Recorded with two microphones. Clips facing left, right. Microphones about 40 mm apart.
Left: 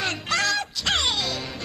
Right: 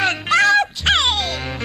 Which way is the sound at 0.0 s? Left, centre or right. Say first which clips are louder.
Right 9 dB; right.